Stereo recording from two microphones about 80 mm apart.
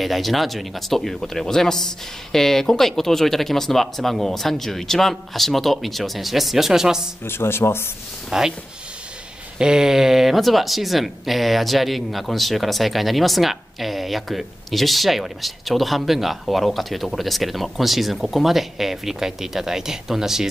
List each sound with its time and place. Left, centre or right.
0.0 s speech: centre
7.2 s speech: left
8.3 s speech: centre
9.6 s speech: centre